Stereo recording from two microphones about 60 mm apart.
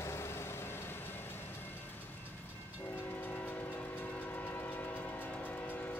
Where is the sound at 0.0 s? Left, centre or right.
Left.